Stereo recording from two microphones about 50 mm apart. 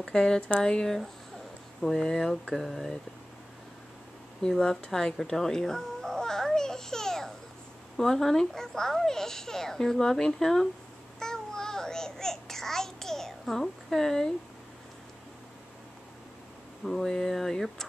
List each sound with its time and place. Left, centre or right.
0.0 s a child's voice: centre
0.4 s a child's voice: left; by 3.0 s centre
4.4 s a child's voice: centre
5.1 s babbling: centre
8.0 s a child's voice: centre
11.1 s babbling: centre
16.8 s a child's voice: centre